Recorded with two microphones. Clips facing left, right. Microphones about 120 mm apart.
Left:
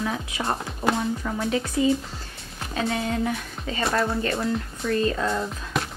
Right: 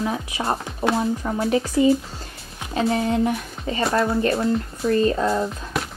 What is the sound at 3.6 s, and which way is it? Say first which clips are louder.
Music: right 4 dB; centre (ahead or behind).